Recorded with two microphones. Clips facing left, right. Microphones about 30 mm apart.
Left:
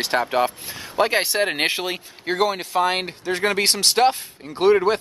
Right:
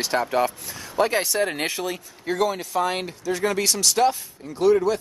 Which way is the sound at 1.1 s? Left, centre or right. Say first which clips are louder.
Left 3 dB; left.